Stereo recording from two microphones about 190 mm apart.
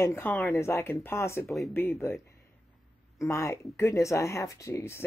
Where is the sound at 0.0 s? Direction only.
10° left (ahead or behind).